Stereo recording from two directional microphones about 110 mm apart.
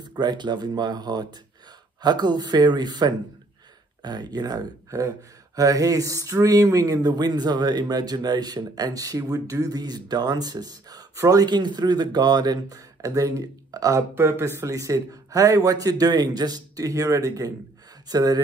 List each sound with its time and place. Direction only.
0.2 s speech: 40° right (ahead or behind)